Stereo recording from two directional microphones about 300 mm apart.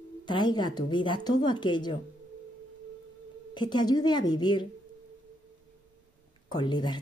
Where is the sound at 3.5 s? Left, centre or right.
Centre.